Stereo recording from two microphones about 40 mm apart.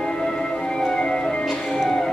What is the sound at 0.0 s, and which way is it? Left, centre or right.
Music, centre.